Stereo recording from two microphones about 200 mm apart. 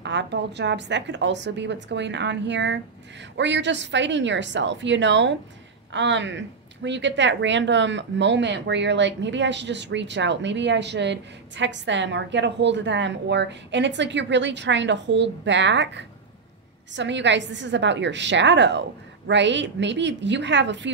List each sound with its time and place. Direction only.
0.0 s a woman's voice: 60° right (ahead or behind)